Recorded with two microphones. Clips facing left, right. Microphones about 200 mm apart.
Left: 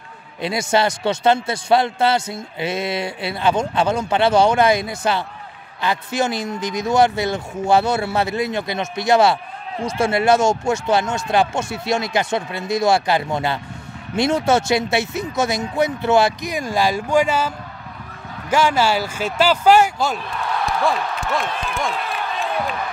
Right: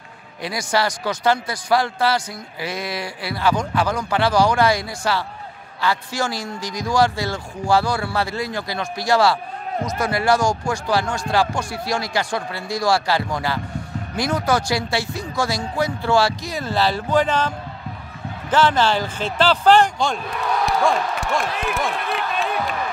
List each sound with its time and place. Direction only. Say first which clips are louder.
0.4 s a man's voice: left 3 dB; 25° left (ahead or behind)
18.5 s speech: even; 10° left (ahead or behind)